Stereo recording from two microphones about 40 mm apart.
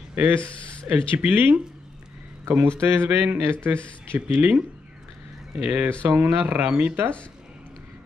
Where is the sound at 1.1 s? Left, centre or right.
Right.